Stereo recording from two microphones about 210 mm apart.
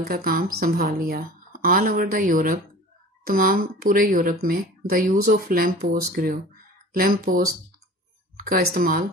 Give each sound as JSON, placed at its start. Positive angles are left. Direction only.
{"t": 0.0, "sound": "speech", "side_deg": -45}